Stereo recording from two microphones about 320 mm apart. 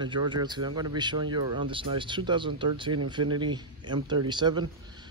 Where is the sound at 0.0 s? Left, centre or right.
Centre.